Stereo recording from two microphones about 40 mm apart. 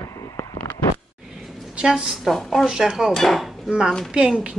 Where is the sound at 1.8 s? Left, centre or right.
Right.